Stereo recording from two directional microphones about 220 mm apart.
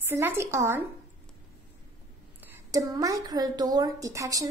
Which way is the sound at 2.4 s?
15° right (ahead or behind).